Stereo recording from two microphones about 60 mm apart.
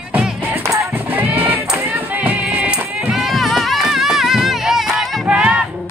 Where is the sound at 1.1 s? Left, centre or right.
Right.